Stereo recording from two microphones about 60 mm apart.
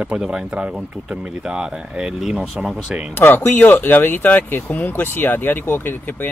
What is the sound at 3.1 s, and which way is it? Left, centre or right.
Speech, left.